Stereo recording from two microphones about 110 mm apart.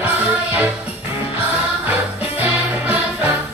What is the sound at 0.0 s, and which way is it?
Music, 15° right (ahead or behind).